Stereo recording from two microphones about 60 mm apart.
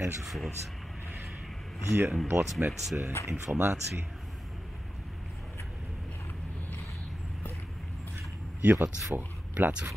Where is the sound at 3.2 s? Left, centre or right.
Left.